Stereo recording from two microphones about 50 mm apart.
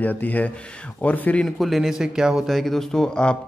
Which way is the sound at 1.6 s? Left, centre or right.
Centre.